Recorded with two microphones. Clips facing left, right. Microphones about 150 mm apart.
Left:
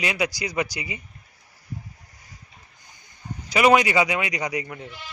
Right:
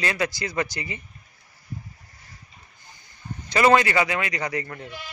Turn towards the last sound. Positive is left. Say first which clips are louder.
# left 1 dB
turn(degrees=15)  # may be behind; listen again after turning